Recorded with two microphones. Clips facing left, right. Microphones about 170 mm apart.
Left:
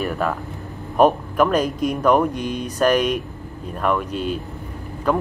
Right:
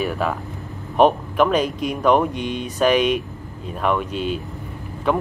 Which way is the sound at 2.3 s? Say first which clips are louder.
Even; 40° left (ahead or behind).